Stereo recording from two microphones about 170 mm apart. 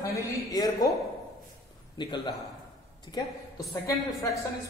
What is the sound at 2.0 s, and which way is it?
Speech, 25° left (ahead or behind).